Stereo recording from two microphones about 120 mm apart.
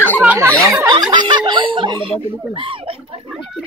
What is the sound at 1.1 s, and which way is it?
Snicker, 40° right (ahead or behind).